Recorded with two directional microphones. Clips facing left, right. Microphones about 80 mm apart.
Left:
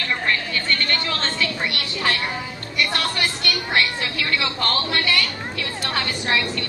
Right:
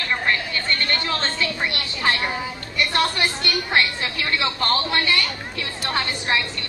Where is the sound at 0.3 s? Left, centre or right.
Right.